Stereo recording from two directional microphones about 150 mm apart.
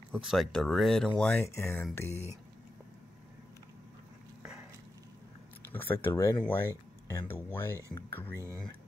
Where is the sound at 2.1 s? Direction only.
45° left (ahead or behind).